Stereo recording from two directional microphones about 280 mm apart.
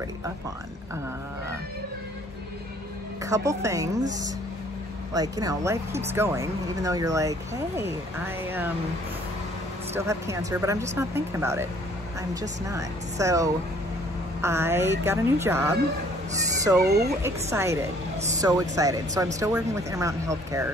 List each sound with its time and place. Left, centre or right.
3.3 s speech: centre
5.1 s speech: centre
9.9 s speech: centre
16.8 s speech: right
17.2 s speech: centre